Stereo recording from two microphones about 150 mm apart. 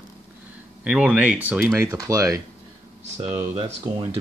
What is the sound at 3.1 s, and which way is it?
Speech, 45° right (ahead or behind).